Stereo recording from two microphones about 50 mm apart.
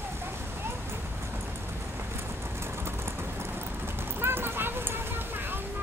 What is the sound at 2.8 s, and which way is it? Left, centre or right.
Vehicle, right.